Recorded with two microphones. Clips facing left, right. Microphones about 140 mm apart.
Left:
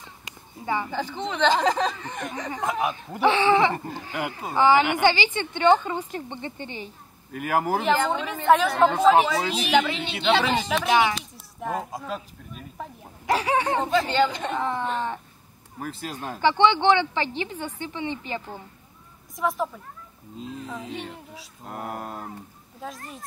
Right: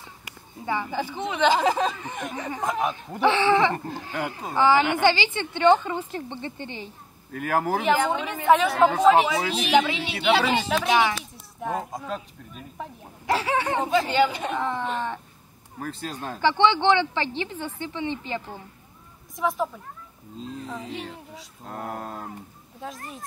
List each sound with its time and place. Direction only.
0.2 s a sound: 15° left (ahead or behind)
0.9 s speech: 10° right (ahead or behind)
2.6 s speech: 5° left (ahead or behind)
3.7 s a woman's voice: 5° left (ahead or behind)
7.9 s a woman's voice: 5° right (ahead or behind)
13.3 s speech: 15° left (ahead or behind)
13.7 s a woman's voice: centre (ahead or behind)
14.6 s speech: 15° left (ahead or behind)
19.3 s a woman's voice: centre (ahead or behind)